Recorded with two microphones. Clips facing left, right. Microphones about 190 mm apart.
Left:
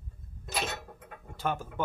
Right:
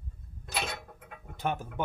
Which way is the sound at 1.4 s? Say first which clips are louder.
Even; 20° right (ahead or behind).